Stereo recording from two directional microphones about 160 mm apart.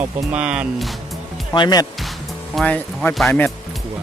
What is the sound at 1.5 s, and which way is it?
Speech, 25° left (ahead or behind).